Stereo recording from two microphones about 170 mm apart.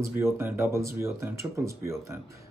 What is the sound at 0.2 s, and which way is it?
Speech, 15° right (ahead or behind).